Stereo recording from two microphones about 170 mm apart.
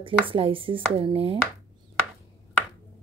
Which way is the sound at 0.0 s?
30° right (ahead or behind).